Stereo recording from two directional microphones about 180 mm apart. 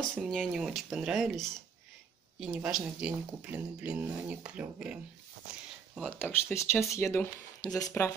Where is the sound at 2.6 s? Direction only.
5° right (ahead or behind).